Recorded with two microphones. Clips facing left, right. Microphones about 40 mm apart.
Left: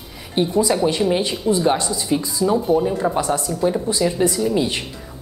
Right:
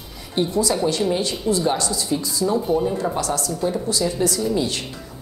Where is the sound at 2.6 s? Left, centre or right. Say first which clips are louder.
Left 3 dB; centre.